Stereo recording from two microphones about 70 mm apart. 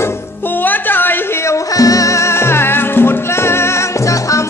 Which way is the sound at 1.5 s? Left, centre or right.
Left.